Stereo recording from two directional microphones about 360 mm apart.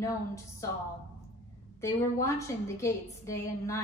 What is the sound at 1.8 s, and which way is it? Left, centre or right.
A woman's voice, centre.